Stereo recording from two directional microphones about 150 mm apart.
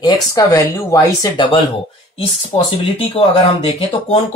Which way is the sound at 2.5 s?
30° left (ahead or behind).